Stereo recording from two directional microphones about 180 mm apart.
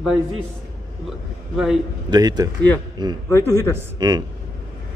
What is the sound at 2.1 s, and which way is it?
Speech, 20° right (ahead or behind).